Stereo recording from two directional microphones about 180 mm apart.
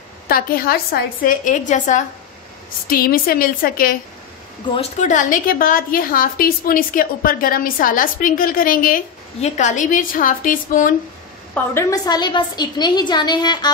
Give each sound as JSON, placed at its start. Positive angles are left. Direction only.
{"t": 0.3, "sound": "a woman's voice", "side_deg": 55}
{"t": 1.2, "sound": "a woman's voice", "side_deg": 45}
{"t": 2.9, "sound": "a woman's voice", "side_deg": 55}
{"t": 4.7, "sound": "a woman's voice", "side_deg": 40}
{"t": 11.5, "sound": "a woman's voice", "side_deg": 15}